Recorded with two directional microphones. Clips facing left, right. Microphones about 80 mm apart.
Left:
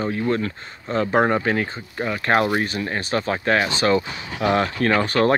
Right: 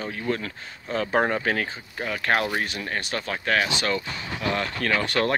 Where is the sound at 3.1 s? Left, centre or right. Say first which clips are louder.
Left 5 dB; centre.